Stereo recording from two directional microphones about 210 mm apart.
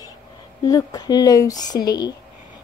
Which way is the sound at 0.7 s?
15° left (ahead or behind).